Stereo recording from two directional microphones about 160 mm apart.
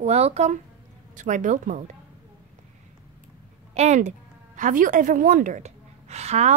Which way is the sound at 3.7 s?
45° right (ahead or behind).